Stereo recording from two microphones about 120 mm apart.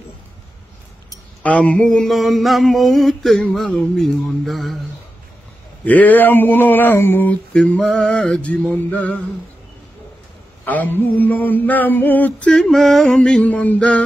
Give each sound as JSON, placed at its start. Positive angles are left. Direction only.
{"t": 1.4, "sound": "mantra", "side_deg": 10}
{"t": 5.9, "sound": "mantra", "side_deg": 15}
{"t": 7.5, "sound": "mantra", "side_deg": 5}
{"t": 10.6, "sound": "mantra", "side_deg": 15}